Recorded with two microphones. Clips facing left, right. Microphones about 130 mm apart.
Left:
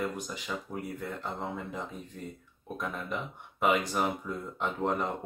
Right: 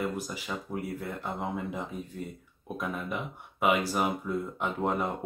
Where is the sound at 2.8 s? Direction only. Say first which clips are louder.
Right 1 dB; 5° right (ahead or behind).